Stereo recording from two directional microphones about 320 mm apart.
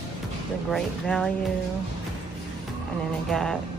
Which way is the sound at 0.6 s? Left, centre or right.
Centre.